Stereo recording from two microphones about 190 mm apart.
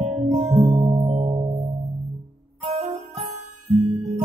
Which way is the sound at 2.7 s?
35° right (ahead or behind).